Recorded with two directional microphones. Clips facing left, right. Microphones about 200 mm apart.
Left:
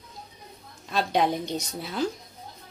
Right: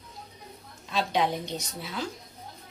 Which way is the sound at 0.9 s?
45° left (ahead or behind).